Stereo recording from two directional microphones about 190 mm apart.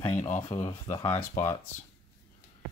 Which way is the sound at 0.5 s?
35° left (ahead or behind).